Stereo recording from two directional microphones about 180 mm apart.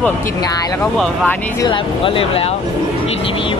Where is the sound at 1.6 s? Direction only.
30° left (ahead or behind).